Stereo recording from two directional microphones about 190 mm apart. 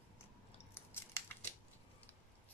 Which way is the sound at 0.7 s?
10° left (ahead or behind).